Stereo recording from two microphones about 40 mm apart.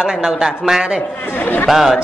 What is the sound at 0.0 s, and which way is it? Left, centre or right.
Speech, centre.